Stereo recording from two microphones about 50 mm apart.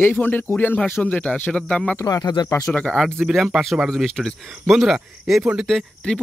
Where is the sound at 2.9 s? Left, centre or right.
Centre.